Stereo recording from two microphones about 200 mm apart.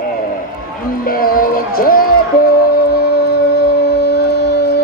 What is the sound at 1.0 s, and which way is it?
Music, 45° left (ahead or behind).